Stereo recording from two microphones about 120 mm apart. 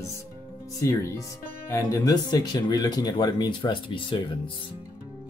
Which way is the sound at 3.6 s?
45° left (ahead or behind).